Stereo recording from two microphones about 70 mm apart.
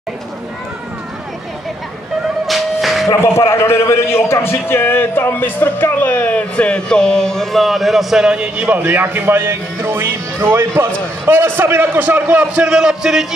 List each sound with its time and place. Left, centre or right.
2.4 s music: centre
3.1 s a man's voice: left; by 8.6 s centre
8.6 s speech: right
12.5 s a man's voice: centre